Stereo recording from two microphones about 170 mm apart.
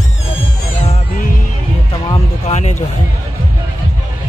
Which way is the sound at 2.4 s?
40° left (ahead or behind).